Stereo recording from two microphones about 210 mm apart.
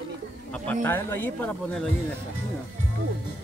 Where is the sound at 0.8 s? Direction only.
10° left (ahead or behind).